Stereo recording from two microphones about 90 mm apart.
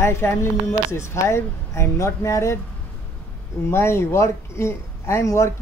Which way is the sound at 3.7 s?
30° left (ahead or behind).